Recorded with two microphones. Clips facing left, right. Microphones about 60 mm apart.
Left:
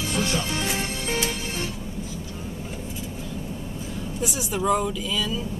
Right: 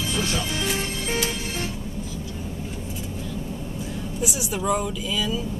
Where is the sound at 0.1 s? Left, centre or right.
Left.